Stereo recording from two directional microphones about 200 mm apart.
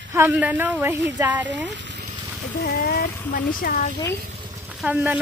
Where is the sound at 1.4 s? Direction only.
65° right (ahead or behind).